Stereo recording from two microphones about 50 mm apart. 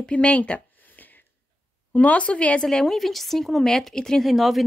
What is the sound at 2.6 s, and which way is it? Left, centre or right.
Speech, centre.